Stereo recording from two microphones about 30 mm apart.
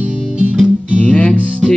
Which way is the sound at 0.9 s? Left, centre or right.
Left.